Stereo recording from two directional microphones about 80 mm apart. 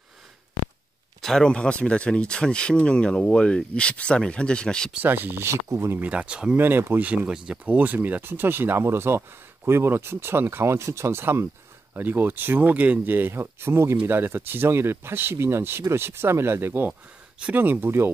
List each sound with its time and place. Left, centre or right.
1.2 s speech: centre
4.9 s speech: right
5.9 s speech: centre
6.6 s speech: right